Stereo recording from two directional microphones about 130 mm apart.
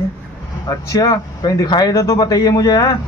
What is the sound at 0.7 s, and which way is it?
Speech, 30° left (ahead or behind).